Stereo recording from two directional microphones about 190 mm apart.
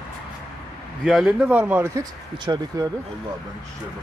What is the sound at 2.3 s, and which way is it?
Speech, 25° right (ahead or behind).